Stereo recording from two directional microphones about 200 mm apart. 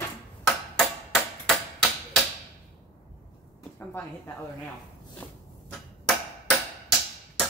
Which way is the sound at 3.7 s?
10° left (ahead or behind).